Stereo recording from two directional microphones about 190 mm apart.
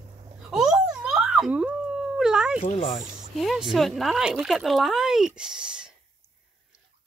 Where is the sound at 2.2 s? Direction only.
5° right (ahead or behind).